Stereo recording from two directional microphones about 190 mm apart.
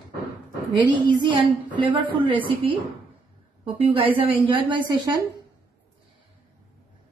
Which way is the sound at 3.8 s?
30° right (ahead or behind).